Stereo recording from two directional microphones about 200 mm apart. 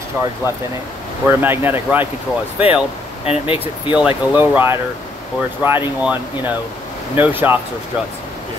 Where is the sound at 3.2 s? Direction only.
30° left (ahead or behind).